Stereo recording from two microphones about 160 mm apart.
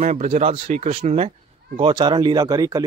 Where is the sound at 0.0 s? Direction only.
45° right (ahead or behind).